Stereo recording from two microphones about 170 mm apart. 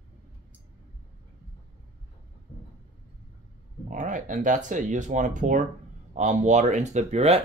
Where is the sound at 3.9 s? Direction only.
50° right (ahead or behind).